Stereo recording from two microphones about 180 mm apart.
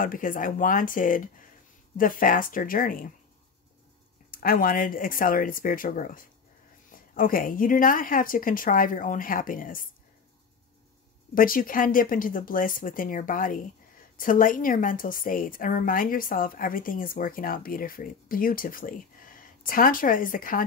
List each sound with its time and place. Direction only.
0.0 s a woman's voice: 50° left (ahead or behind)
4.3 s a woman's voice: 55° left (ahead or behind)
11.3 s a woman's voice: 50° left (ahead or behind)